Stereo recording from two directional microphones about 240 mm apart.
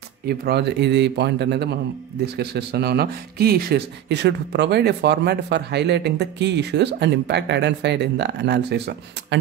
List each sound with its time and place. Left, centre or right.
0.3 s speech: right